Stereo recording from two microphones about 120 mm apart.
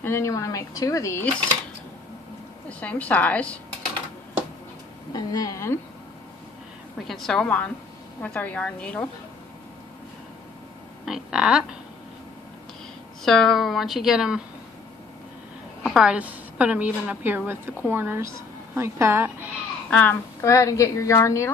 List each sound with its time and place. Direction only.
0.0 s speech: 20° left (ahead or behind)
2.8 s a woman's voice: 10° left (ahead or behind)
5.1 s speech: 30° left (ahead or behind)
7.0 s a woman's voice: centre (ahead or behind)
11.1 s a woman's voice: 5° right (ahead or behind)
13.2 s a woman's voice: 5° left (ahead or behind)
15.8 s a woman's voice: 5° right (ahead or behind); by 19.3 s 20° right (ahead or behind)
19.9 s a woman's voice: 15° left (ahead or behind)
20.4 s speech: 25° left (ahead or behind)